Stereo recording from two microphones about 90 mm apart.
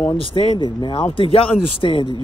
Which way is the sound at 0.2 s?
65° left (ahead or behind).